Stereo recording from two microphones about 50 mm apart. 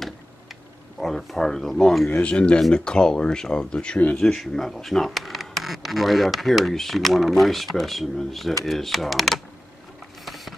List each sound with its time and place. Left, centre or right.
0.9 s speech: centre
2.0 s speech: left
2.3 s speech: left
4.2 s speech: centre
10.2 s a sound: centre